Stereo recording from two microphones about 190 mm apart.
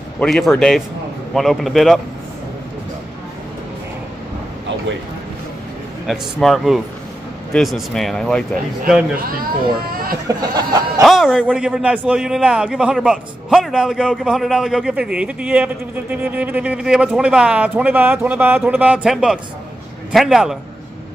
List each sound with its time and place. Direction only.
0.2 s a man's voice: centre (ahead or behind)
6.0 s a man's voice: centre (ahead or behind)
10.2 s a sound: 20° right (ahead or behind)
11.0 s a man's voice: 5° right (ahead or behind)